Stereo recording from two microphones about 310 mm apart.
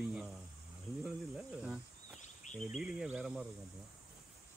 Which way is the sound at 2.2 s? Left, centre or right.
Left.